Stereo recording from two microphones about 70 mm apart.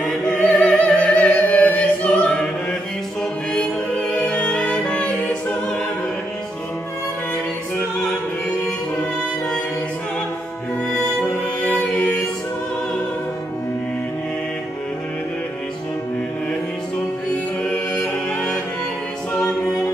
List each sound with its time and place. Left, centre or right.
0.0 s music: centre
11.6 s music: centre
17.7 s music: centre